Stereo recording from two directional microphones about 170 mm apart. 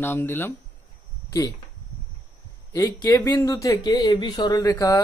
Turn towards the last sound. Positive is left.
turn(degrees=20)  # may be behind; listen again after turning